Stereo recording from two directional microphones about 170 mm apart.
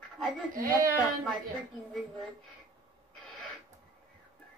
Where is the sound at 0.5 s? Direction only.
55° right (ahead or behind).